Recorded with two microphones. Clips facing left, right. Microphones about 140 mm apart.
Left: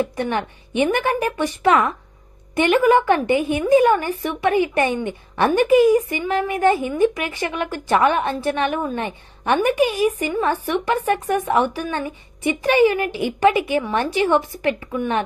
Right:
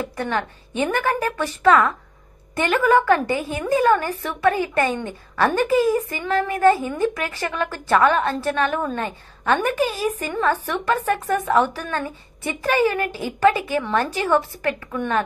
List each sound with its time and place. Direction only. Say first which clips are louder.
0.0 s a woman's voice: left 3 dB; 20° left (ahead or behind)